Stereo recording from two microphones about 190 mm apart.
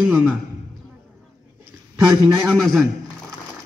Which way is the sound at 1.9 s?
15° right (ahead or behind).